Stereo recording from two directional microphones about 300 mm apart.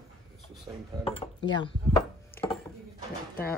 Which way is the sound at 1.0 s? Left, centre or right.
Centre.